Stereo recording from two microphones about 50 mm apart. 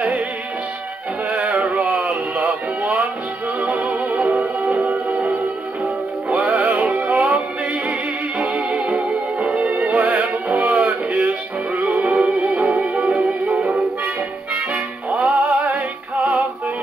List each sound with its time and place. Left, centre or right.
1.3 s music: right
6.5 s music: centre
7.1 s music: right
9.7 s music: right
15.0 s music: right